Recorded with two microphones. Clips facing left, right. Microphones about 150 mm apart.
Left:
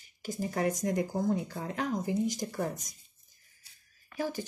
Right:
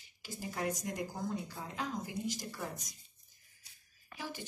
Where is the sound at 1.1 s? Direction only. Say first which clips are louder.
Left 9 dB; 50° left (ahead or behind).